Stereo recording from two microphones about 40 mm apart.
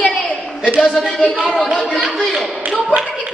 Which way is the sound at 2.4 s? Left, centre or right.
Centre.